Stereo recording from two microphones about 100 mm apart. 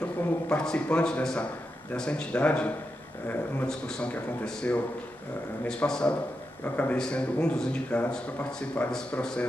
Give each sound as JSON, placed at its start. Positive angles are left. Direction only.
{"t": 0.5, "sound": "a man's voice", "side_deg": 10}